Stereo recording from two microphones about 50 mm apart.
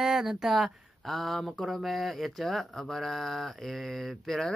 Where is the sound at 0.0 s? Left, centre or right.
Centre.